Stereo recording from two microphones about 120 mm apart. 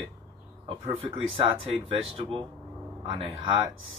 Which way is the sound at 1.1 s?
50° right (ahead or behind).